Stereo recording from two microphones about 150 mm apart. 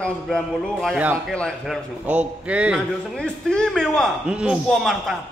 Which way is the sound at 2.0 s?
10° right (ahead or behind).